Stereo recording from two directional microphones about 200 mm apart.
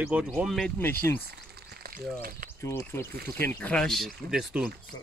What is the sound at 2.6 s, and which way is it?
Speech, 10° left (ahead or behind).